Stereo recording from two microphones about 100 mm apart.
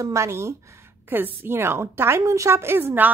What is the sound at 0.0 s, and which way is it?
A woman's voice, 30° right (ahead or behind).